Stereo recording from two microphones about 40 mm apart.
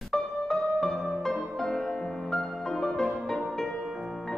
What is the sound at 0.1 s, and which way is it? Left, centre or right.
Music, centre.